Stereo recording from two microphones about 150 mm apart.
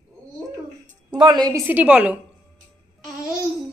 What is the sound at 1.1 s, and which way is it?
Speech, 25° right (ahead or behind).